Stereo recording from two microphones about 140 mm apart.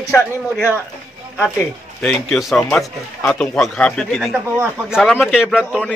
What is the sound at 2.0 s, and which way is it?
Speech, 5° left (ahead or behind).